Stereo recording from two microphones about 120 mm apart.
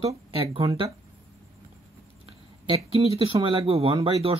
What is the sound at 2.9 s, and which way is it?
A man's voice, 55° right (ahead or behind).